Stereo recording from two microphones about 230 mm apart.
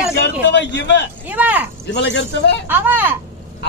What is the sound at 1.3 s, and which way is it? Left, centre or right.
Speech, centre.